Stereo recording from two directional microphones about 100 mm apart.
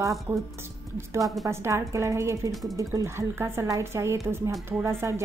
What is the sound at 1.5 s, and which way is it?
A woman's voice, 30° right (ahead or behind).